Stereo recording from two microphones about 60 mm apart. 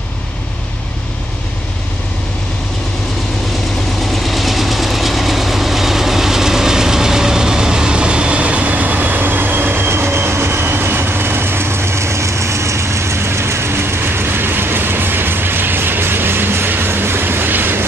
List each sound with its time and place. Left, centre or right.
4.0 s vehicle: centre; by 17.8 s right